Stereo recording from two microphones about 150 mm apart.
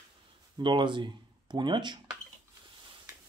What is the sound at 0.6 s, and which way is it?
Speech, 35° right (ahead or behind).